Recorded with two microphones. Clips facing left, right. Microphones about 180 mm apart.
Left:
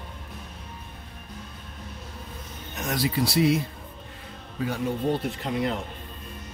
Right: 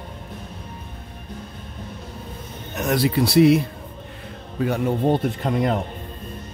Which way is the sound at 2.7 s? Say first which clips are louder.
Right 7 dB; 65° right (ahead or behind).